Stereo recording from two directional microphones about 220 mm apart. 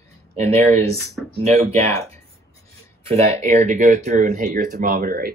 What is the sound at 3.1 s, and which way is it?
Speech, 30° right (ahead or behind).